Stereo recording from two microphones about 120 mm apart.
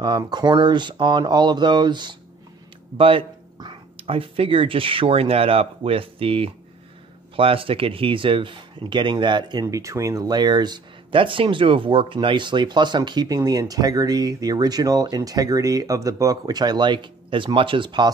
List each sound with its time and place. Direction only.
0.2 s speech: 35° right (ahead or behind)
3.0 s a sound: 50° right (ahead or behind)
4.0 s speech: 50° right (ahead or behind)